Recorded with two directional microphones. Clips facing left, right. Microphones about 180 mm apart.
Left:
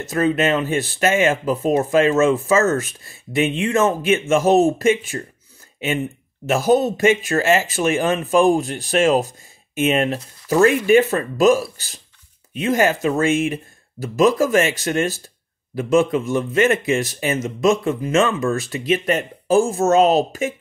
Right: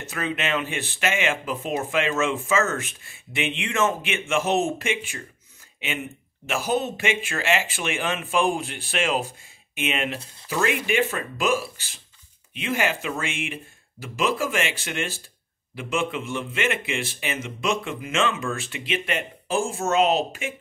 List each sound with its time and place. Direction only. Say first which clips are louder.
0.1 s speech: left 9 dB; 40° left (ahead or behind)
6.4 s speech: left 9 dB; 40° left (ahead or behind)